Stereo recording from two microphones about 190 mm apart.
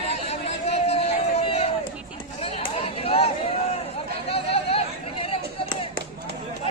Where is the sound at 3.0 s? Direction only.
30° left (ahead or behind).